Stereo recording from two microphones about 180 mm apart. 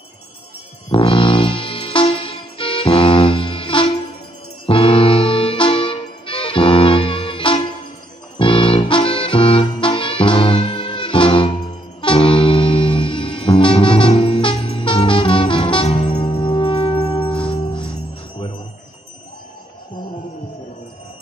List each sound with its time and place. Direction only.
0.9 s music: 30° left (ahead or behind)